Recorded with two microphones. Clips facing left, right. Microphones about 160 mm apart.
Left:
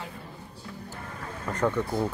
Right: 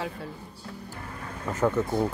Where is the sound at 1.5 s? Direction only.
5° right (ahead or behind).